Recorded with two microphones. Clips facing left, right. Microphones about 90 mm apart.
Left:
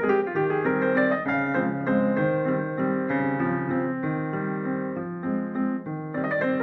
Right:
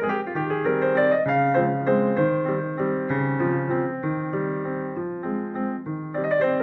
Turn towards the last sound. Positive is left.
turn(degrees=0)  # may be behind; listen again after turning